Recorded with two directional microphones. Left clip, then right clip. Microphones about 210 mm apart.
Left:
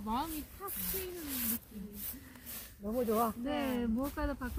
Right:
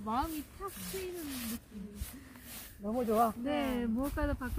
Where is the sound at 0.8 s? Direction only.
50° left (ahead or behind).